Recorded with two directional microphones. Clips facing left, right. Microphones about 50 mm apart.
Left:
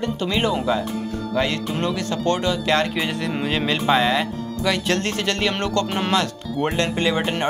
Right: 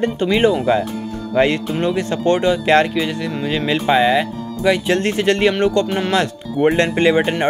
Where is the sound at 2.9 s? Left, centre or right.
Centre.